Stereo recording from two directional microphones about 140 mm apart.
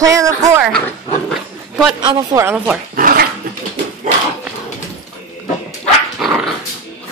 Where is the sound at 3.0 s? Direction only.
90° right.